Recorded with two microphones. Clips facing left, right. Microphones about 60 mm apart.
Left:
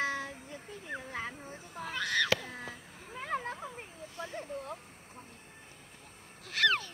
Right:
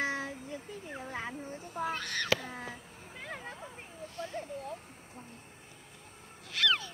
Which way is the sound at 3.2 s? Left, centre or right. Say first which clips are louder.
Left 7 dB; left.